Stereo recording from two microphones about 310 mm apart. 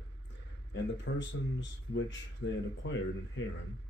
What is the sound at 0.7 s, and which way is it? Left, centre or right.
Speech, left.